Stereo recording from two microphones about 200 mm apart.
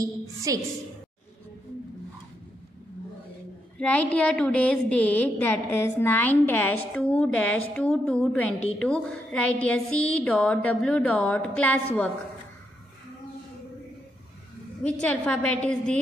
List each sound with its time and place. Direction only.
0.0 s a woman's voice: 15° right (ahead or behind)
3.7 s a woman's voice: 5° left (ahead or behind)
14.8 s a woman's voice: 5° left (ahead or behind)